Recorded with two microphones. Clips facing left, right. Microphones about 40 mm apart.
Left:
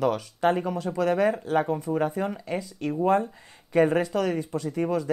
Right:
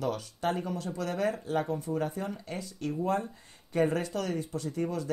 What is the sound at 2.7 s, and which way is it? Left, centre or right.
Speech, left.